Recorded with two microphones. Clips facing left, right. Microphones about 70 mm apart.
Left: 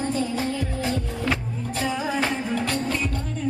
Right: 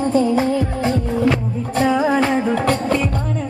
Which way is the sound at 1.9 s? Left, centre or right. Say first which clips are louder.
Right 9 dB; right.